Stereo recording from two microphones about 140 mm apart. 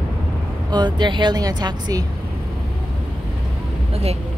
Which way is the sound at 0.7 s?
35° right (ahead or behind).